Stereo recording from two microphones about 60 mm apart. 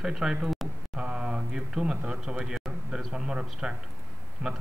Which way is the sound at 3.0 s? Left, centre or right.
Centre.